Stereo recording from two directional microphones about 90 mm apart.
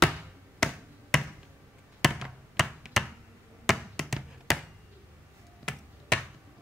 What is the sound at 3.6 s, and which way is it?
Tap, centre (ahead or behind).